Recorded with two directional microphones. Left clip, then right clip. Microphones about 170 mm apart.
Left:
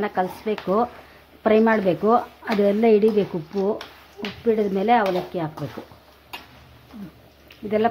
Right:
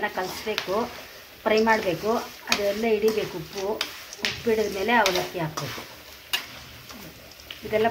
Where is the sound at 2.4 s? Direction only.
65° left (ahead or behind).